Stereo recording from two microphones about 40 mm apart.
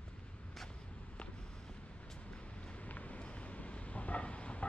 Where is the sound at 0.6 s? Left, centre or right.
Left.